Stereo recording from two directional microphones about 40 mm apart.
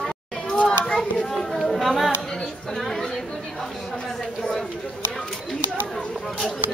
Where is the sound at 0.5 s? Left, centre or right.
Left.